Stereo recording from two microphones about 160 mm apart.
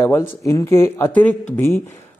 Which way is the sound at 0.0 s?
15° left (ahead or behind).